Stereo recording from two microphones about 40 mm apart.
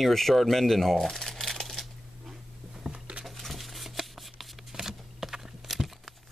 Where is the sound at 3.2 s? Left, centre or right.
Centre.